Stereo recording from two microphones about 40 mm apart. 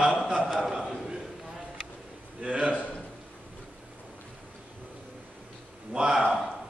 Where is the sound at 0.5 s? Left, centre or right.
Centre.